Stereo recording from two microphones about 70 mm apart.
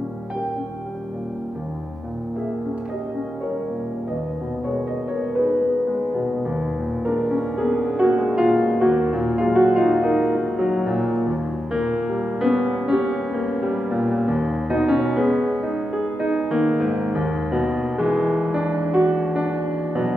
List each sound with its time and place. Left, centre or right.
7.1 s music: centre